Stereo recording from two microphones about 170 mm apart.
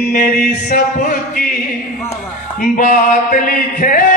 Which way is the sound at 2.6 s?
55° left (ahead or behind).